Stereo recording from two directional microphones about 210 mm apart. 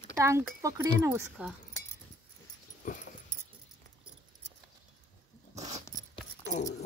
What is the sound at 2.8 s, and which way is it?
Dog, 40° left (ahead or behind).